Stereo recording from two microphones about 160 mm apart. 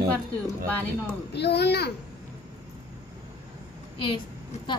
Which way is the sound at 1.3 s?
90° left.